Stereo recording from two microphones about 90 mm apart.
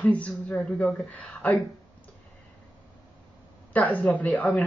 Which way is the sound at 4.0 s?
15° left (ahead or behind).